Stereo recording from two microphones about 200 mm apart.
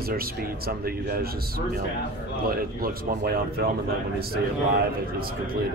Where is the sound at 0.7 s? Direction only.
50° right (ahead or behind).